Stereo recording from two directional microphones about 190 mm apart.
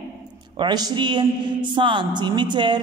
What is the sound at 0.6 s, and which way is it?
A woman's voice, 20° right (ahead or behind).